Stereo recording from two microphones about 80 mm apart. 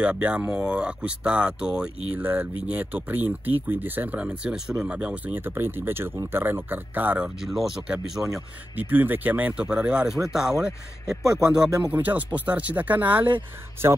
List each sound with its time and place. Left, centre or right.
0.0 s speech: centre
2.1 s speech: right
7.3 s speech: centre
8.7 s speech: right
9.6 s speech: centre
11.8 s speech: right